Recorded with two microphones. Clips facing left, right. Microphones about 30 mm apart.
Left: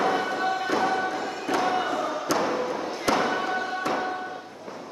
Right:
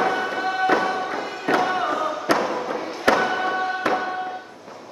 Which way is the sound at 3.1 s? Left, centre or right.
Centre.